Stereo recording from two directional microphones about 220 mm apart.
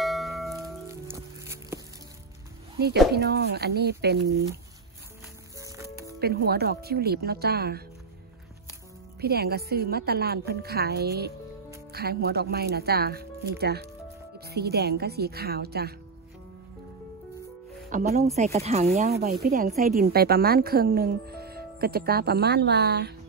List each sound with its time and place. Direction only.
0.0 s a sound: centre (ahead or behind)
0.8 s music: 15° right (ahead or behind)
3.1 s a woman's voice: 45° right (ahead or behind)
6.1 s a woman's voice: 45° right (ahead or behind)
9.2 s a woman's voice: 45° right (ahead or behind)
17.8 s speech: 35° right (ahead or behind)
19.0 s a woman's voice: 45° right (ahead or behind)